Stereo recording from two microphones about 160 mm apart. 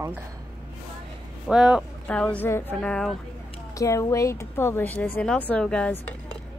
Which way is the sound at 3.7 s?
20° left (ahead or behind).